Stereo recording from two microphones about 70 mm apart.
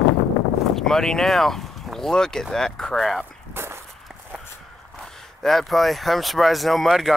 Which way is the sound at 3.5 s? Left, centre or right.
Right.